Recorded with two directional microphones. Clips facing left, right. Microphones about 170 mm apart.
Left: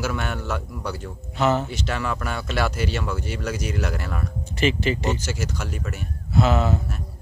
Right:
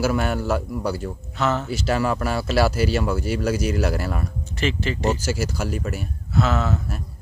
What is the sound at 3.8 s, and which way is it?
Speech, 35° right (ahead or behind).